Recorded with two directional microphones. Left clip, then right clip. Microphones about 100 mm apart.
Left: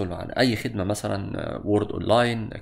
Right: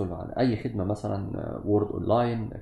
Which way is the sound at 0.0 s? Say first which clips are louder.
Left 4 dB; 20° left (ahead or behind).